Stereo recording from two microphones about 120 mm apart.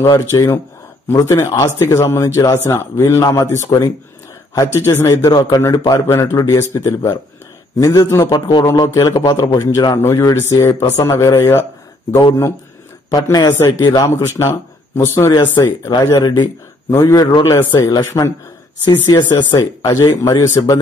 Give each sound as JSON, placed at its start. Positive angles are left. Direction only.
{"t": 0.0, "sound": "a man's voice", "side_deg": 30}
{"t": 4.7, "sound": "a man's voice", "side_deg": 20}
{"t": 13.1, "sound": "speech", "side_deg": 35}
{"t": 13.5, "sound": "a man's voice", "side_deg": 20}